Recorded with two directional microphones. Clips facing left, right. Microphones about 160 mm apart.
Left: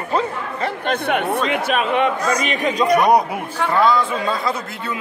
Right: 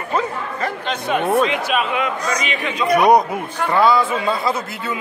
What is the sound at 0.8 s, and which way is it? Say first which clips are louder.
Speech: left 2 dB; 60° left (ahead or behind).